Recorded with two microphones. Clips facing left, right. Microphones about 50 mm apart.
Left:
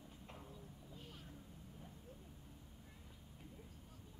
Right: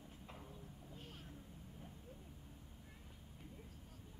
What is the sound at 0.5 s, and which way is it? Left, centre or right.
Clip-clop, right.